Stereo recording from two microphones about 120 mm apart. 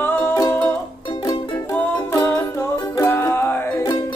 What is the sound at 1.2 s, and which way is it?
Music, 30° left (ahead or behind).